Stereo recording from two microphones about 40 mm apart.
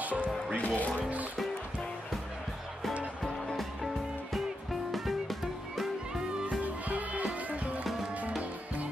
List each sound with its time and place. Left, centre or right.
0.0 s speech: right
0.6 s speech: left
3.5 s music: centre
6.6 s music: right